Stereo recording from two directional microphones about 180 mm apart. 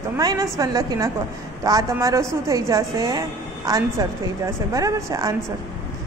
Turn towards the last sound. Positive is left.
turn(degrees=-15)  # may be behind; listen again after turning